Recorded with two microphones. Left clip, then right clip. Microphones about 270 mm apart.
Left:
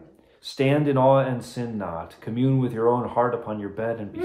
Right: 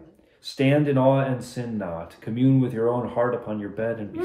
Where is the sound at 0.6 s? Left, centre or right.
Centre.